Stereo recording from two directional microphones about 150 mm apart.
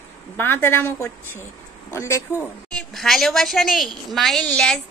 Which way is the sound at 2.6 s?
5° left (ahead or behind).